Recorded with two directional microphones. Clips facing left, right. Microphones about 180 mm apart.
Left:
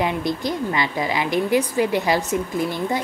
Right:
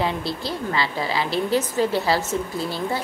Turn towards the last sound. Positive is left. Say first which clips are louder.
# left 3 dB
turn(degrees=15)  # may be behind; listen again after turning